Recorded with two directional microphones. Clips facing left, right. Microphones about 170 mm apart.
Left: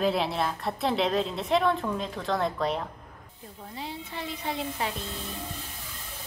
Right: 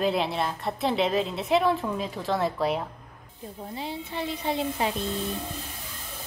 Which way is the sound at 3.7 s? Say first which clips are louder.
Right 3 dB; 25° right (ahead or behind).